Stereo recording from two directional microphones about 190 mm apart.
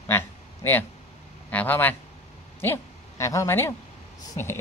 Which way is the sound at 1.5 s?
10° left (ahead or behind).